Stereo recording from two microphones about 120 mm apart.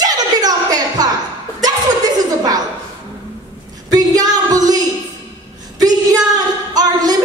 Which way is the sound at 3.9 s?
30° right (ahead or behind).